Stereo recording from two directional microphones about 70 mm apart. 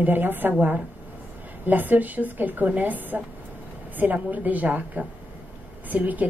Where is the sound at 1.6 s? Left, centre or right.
Right.